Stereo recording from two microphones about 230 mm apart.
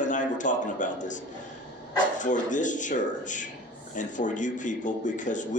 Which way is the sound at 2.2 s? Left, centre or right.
Left.